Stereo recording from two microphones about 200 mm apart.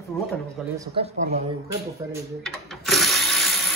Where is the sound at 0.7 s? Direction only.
30° right (ahead or behind).